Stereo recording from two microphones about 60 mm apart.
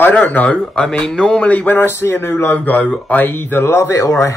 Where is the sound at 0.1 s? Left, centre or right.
Left.